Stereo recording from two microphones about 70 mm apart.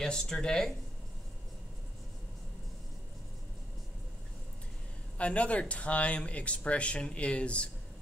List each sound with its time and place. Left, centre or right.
0.0 s speech: centre
5.1 s speech: centre